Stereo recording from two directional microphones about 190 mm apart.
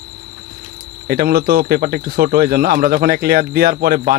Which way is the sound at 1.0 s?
55° right (ahead or behind).